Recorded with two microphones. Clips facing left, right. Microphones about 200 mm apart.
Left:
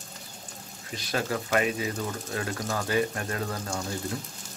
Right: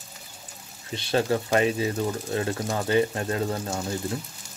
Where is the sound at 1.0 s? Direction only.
30° right (ahead or behind).